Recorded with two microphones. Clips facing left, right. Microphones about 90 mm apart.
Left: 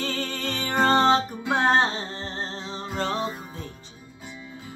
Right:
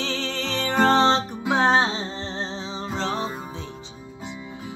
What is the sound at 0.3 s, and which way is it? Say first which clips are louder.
Music: right 3 dB; 70° right (ahead or behind).